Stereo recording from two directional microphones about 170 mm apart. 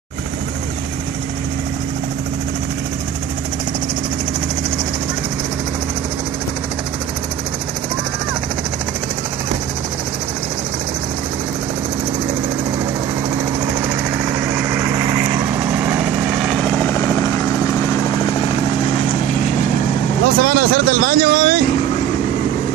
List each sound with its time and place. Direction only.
14.1 s vehicle: 10° right (ahead or behind)
16.6 s vehicle: 15° left (ahead or behind)
20.3 s vehicle: 70° right (ahead or behind)